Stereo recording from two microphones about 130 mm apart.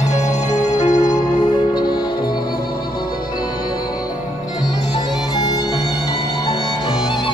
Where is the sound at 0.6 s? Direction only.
65° left (ahead or behind).